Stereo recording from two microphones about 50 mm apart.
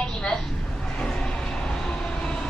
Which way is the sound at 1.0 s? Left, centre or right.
Centre.